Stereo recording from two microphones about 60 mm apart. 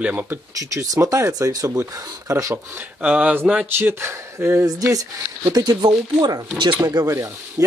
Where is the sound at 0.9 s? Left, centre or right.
Right.